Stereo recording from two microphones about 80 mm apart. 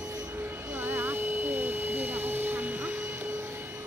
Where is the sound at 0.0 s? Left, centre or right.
Right.